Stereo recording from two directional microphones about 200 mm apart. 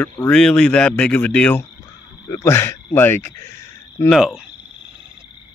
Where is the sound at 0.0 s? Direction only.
5° left (ahead or behind).